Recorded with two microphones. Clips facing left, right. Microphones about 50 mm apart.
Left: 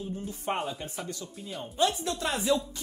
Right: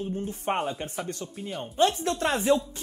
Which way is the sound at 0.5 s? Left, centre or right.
Centre.